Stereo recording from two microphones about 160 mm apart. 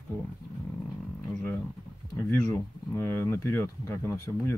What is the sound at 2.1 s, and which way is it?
Speech, 15° left (ahead or behind).